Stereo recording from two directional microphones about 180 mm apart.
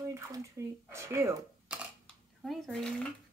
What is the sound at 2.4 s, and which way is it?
Speech, centre (ahead or behind).